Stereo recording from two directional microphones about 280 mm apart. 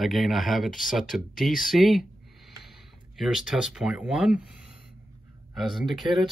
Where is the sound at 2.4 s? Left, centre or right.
Left.